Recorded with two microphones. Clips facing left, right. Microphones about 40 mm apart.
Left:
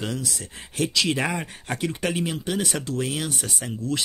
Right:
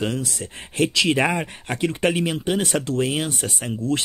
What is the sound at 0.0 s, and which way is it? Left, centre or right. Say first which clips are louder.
Speech: right 4 dB; right.